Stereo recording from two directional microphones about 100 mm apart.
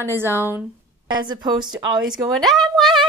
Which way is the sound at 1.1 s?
45° right (ahead or behind).